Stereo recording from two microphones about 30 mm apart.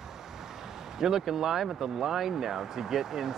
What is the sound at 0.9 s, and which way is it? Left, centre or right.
Speech, centre.